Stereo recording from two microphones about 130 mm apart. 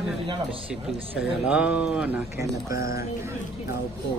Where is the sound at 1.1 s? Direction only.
10° right (ahead or behind).